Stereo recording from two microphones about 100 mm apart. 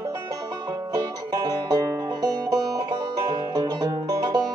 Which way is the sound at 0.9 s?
40° right (ahead or behind).